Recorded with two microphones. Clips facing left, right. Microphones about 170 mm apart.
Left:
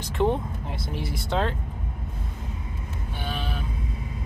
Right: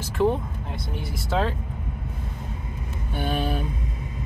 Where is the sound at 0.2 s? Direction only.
Centre (ahead or behind).